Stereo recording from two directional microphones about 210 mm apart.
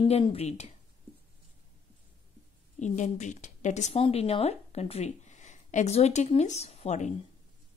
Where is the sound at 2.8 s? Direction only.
35° left (ahead or behind).